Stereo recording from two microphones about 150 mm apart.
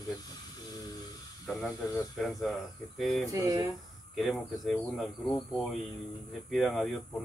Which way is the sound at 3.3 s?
20° right (ahead or behind).